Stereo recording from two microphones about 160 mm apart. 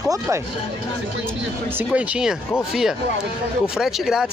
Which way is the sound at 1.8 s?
5° right (ahead or behind).